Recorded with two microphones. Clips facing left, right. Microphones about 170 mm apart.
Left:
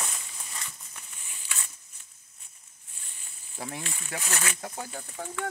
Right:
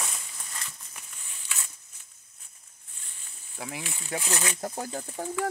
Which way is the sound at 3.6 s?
5° right (ahead or behind).